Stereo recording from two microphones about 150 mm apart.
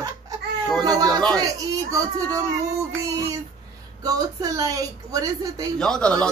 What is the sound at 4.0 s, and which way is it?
Music, 25° right (ahead or behind).